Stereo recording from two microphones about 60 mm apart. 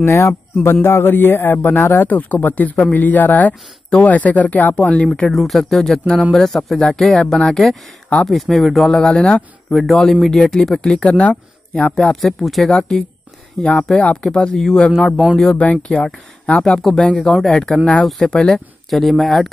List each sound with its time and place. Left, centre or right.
0.0 s speech: left
0.8 s speech: left; by 5.3 s centre
5.3 s speech: centre
9.1 s speech: centre
9.7 s speech: centre
12.1 s speech: centre
12.6 s speech: centre
18.9 s speech: centre